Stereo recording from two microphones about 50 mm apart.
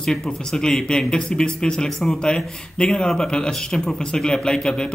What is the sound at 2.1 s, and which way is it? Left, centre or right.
A man's voice, centre.